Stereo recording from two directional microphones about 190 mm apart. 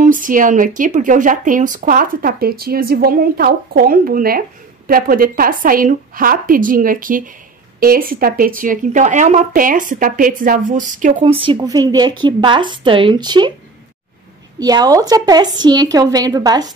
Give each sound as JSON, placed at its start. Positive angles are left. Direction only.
{"t": 0.0, "sound": "speech", "side_deg": -45}
{"t": 11.3, "sound": "a woman's voice", "side_deg": -25}
{"t": 14.6, "sound": "a woman's voice", "side_deg": -20}